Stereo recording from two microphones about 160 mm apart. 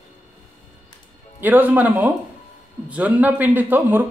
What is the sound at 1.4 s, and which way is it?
A man's voice, 10° right (ahead or behind).